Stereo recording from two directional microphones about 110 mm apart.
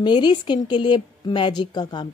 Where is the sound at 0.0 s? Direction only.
45° left (ahead or behind).